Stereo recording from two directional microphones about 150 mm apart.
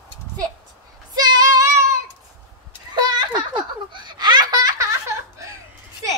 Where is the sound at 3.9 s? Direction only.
30° right (ahead or behind).